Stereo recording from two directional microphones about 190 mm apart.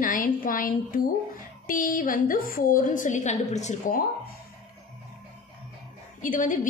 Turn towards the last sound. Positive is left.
turn(degrees=45)  # may be behind; listen again after turning